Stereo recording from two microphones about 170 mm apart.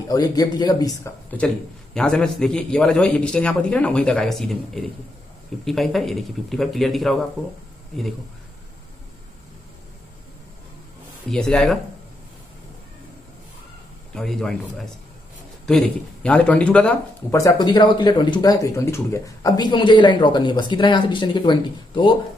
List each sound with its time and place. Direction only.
0.1 s speech: 20° left (ahead or behind)
2.0 s a man's voice: 5° left (ahead or behind)
11.2 s a man's voice: 5° left (ahead or behind)
14.1 s a man's voice: 5° left (ahead or behind)
17.4 s speech: 20° left (ahead or behind)